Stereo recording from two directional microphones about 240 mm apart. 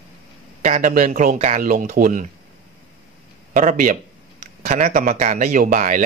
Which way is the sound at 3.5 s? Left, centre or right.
Right.